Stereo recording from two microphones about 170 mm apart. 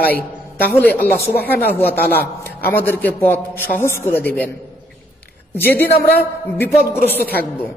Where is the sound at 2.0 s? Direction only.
65° left (ahead or behind).